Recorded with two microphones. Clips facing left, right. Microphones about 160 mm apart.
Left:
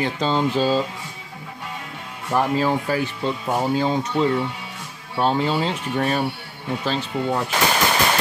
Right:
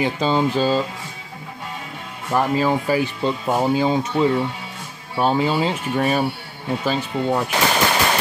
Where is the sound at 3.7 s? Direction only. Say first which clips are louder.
Right 2 dB; 10° right (ahead or behind).